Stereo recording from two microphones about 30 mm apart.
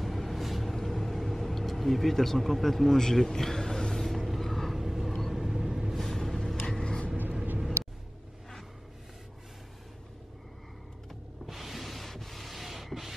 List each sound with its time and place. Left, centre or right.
0.0 s vehicle: centre
0.7 s vehicle: centre
1.7 s speech: centre
3.0 s vehicle: centre
4.7 s vehicle: centre
5.9 s vehicle: centre
6.8 s creak: left
11.4 s a sound: centre